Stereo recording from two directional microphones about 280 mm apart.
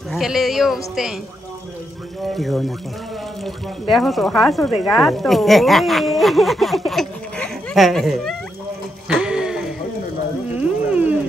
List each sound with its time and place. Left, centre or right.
0.1 s speech: centre
2.2 s speech: centre
3.9 s speech: centre
6.9 s a sound: centre
10.5 s music: centre